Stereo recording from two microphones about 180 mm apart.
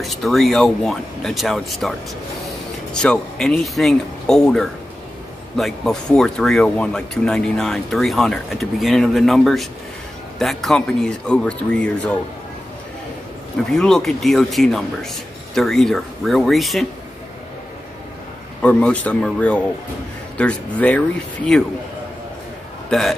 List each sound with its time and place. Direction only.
0.0 s speech: centre (ahead or behind)
13.7 s speech: 5° left (ahead or behind)
18.6 s speech: 5° left (ahead or behind)
22.8 s a man's voice: centre (ahead or behind)